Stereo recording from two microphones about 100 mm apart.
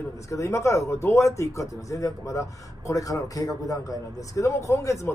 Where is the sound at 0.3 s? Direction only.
30° left (ahead or behind).